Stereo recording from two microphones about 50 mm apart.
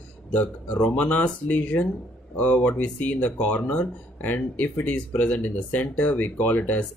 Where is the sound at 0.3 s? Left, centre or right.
Left.